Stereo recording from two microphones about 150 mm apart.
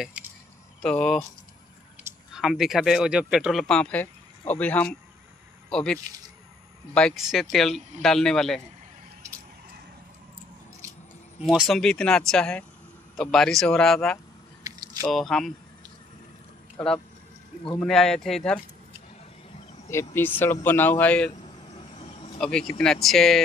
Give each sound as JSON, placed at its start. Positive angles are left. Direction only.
{"t": 0.8, "sound": "speech", "side_deg": 5}
{"t": 2.3, "sound": "speech", "side_deg": 0}
{"t": 11.4, "sound": "speech", "side_deg": 0}
{"t": 16.7, "sound": "speech", "side_deg": 5}
{"t": 19.9, "sound": "speech", "side_deg": 15}
{"t": 21.7, "sound": "vehicle", "side_deg": 40}
{"t": 22.4, "sound": "speech", "side_deg": 5}